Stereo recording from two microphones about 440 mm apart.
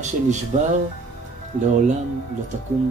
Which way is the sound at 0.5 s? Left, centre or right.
Centre.